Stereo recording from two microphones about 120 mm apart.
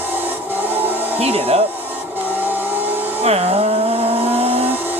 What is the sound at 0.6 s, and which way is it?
Music, 15° right (ahead or behind).